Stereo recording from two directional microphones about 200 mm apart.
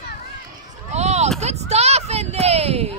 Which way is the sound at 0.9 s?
35° right (ahead or behind).